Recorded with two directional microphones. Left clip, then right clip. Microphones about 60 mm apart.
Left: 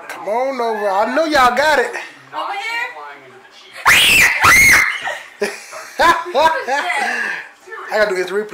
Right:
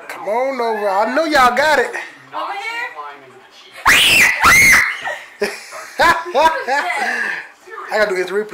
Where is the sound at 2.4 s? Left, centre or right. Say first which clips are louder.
Left 1 dB; centre.